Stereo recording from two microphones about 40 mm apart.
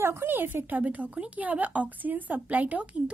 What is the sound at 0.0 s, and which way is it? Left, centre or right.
Speech, right.